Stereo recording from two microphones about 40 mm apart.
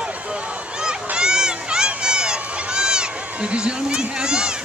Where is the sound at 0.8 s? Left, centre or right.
Right.